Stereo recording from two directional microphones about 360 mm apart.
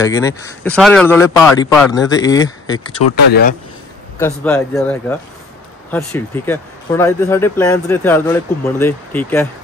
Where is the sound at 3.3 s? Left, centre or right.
Left.